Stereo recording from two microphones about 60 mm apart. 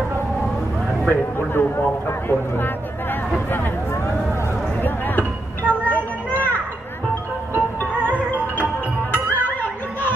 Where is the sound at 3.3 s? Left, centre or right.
Left.